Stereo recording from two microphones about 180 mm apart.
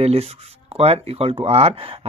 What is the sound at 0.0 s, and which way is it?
Speech, 35° right (ahead or behind).